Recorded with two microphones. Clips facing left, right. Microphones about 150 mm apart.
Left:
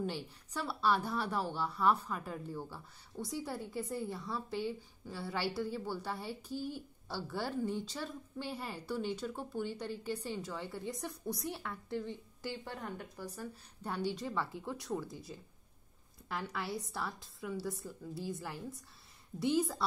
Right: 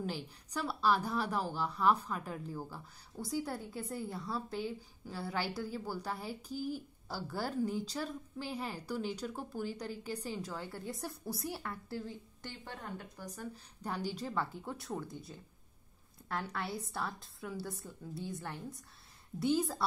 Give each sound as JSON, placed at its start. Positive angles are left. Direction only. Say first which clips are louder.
{"t": 0.0, "sound": "a woman's voice", "louder": "left 1 dB", "side_deg": 0}
{"t": 6.5, "sound": "a woman's voice", "louder": "right 2 dB", "side_deg": 30}
{"t": 7.1, "sound": "a woman's voice", "louder": "even", "side_deg": 0}